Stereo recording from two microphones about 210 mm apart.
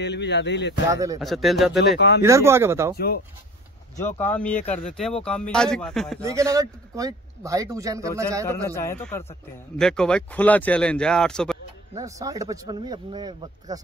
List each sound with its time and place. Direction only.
0.0 s speech: 55° left (ahead or behind)
0.8 s speech: 15° right (ahead or behind)
1.2 s speech: centre (ahead or behind)
2.0 s speech: 55° left (ahead or behind)
2.2 s speech: 15° right (ahead or behind)
4.3 s speech: 5° left (ahead or behind)
6.2 s speech: 15° right (ahead or behind)
8.5 s speech: 10° left (ahead or behind)
11.9 s speech: 15° right (ahead or behind)